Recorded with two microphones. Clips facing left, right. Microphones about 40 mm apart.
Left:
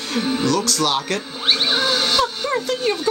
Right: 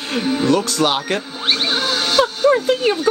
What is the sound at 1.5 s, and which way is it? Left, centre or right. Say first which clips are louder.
Music: even; centre.